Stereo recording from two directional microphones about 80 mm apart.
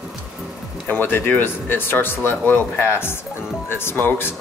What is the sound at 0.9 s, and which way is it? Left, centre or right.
Speech, left.